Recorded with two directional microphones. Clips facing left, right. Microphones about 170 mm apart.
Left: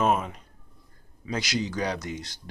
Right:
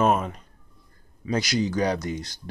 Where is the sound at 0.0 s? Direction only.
Centre (ahead or behind).